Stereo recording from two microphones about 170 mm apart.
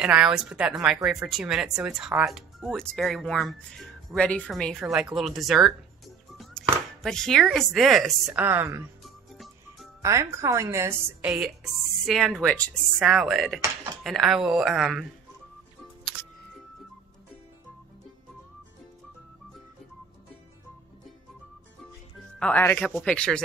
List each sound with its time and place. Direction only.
0.0 s speech: 5° right (ahead or behind)
6.3 s music: centre (ahead or behind)
7.5 s speech: centre (ahead or behind)
8.4 s a woman's voice: 10° right (ahead or behind)
9.3 s music: centre (ahead or behind)
10.0 s a woman's voice: 15° right (ahead or behind)
11.2 s speech: 5° right (ahead or behind)
22.4 s speech: 10° left (ahead or behind)